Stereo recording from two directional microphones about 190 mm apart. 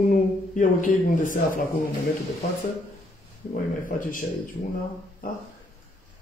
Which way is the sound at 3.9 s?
45° left (ahead or behind).